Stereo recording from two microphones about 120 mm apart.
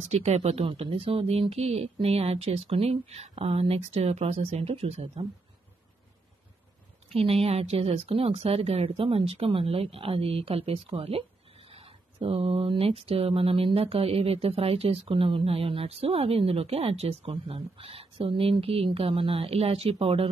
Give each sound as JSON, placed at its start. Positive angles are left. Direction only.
{"t": 0.1, "sound": "speech", "side_deg": -65}
{"t": 7.1, "sound": "speech", "side_deg": -55}